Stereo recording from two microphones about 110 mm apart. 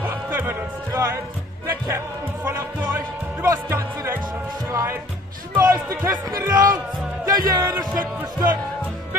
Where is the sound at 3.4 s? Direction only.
25° right (ahead or behind).